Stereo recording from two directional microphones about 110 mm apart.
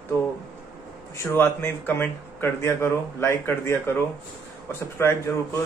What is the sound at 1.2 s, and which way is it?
Speech, 20° left (ahead or behind).